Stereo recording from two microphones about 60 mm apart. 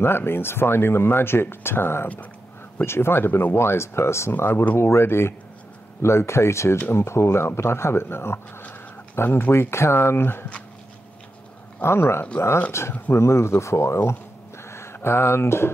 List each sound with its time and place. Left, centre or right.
0.0 s speech: left
4.3 s speech: left
4.7 s speech: left
11.8 s speech: left
14.6 s a sound: left